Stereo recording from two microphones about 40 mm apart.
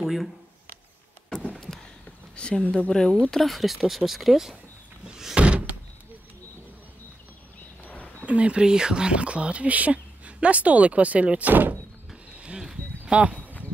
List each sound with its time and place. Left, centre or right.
0.0 s speech: centre
2.3 s speech: left
3.3 s speech: centre
5.0 s door: centre
5.4 s door: right
7.8 s a sound: left
8.3 s speech: right
8.6 s speech: right
12.3 s a sound: right
13.0 s speech: right
13.4 s a sound: left